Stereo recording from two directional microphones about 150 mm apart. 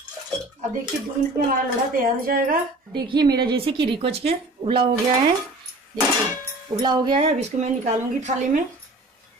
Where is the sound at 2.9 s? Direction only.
30° right (ahead or behind).